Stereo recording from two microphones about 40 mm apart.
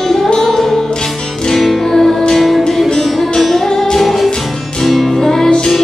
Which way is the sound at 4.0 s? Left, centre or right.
Centre.